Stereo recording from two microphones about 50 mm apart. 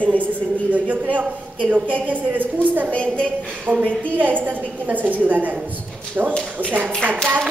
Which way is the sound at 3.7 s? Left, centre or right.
Right.